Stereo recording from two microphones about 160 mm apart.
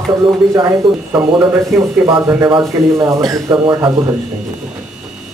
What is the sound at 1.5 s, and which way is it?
A man's voice, 20° right (ahead or behind).